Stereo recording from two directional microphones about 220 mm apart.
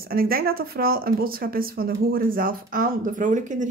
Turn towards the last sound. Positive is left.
turn(degrees=-35)  # may be behind; listen again after turning